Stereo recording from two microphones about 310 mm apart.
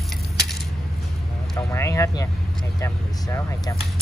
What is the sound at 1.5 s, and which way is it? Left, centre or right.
Vehicle, centre.